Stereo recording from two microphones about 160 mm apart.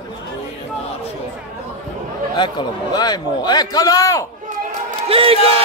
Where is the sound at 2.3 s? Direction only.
30° left (ahead or behind).